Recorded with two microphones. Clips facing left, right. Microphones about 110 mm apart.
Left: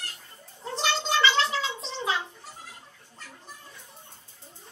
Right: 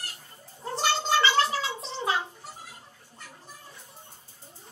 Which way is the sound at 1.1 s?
40° right (ahead or behind).